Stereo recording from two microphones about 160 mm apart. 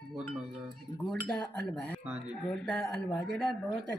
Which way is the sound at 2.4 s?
5° left (ahead or behind).